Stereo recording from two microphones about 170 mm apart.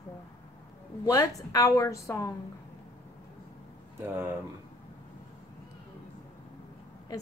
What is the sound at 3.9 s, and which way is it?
Speech, 15° right (ahead or behind).